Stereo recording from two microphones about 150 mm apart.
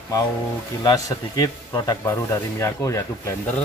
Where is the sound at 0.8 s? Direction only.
25° left (ahead or behind).